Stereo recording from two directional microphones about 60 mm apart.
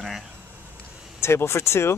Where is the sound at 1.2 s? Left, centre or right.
Left.